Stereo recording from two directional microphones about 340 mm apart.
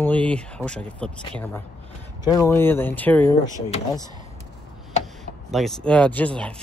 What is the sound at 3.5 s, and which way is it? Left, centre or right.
Speech, centre.